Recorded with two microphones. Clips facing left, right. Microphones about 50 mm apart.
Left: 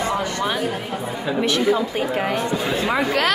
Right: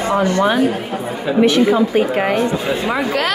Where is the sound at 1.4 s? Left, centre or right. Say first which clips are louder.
Right 7 dB; right.